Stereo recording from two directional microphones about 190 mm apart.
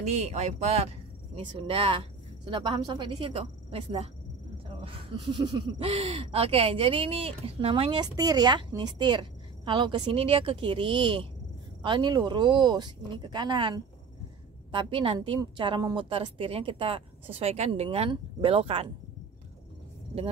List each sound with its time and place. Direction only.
0.0 s speech: 35° right (ahead or behind)